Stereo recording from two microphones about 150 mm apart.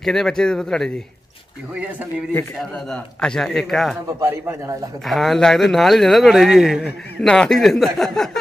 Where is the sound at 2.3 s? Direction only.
15° left (ahead or behind).